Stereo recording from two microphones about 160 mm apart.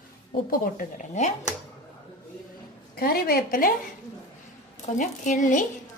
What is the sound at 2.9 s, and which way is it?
Speech, 70° left (ahead or behind).